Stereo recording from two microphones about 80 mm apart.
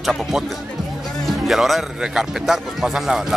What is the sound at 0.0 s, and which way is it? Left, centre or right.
Speech, centre.